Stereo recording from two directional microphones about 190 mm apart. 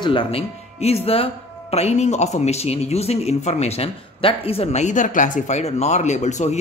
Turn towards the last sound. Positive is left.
turn(degrees=40)  # may be behind; listen again after turning